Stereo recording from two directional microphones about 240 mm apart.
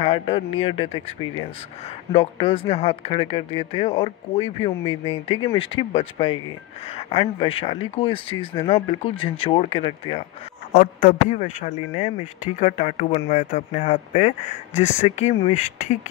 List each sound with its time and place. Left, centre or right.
0.0 s speech: left